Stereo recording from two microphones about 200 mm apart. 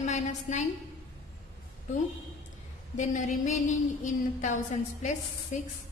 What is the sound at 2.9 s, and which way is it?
Speech, 40° left (ahead or behind).